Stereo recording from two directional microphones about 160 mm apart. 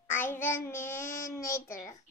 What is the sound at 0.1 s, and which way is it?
A child's voice, 15° left (ahead or behind).